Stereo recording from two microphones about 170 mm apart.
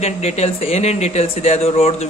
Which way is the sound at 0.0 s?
40° left (ahead or behind).